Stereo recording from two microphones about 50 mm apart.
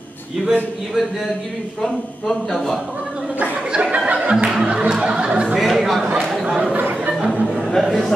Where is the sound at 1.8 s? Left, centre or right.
Centre.